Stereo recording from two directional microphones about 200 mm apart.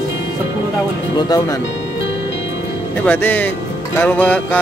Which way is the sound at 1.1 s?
20° left (ahead or behind).